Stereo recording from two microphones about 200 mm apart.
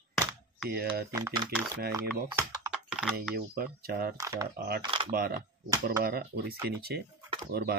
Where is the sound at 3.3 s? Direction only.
50° right (ahead or behind).